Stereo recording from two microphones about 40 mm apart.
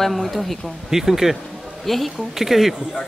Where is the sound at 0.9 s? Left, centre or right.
Centre.